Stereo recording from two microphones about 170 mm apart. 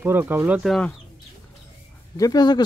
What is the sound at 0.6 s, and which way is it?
Speech, 5° left (ahead or behind).